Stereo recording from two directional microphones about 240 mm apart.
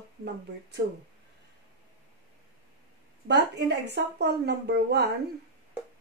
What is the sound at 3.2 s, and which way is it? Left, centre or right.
A woman's voice, right.